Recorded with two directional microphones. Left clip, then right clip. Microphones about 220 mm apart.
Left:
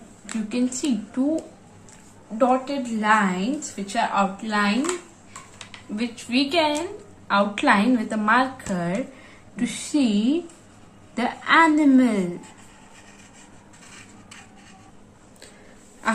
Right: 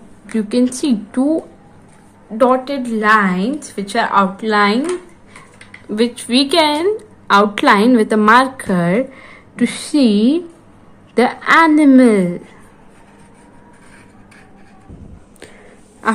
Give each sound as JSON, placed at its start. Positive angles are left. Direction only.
{"t": 0.5, "sound": "a woman's voice", "side_deg": -50}
{"t": 2.3, "sound": "a woman's voice", "side_deg": -50}
{"t": 5.9, "sound": "a woman's voice", "side_deg": -50}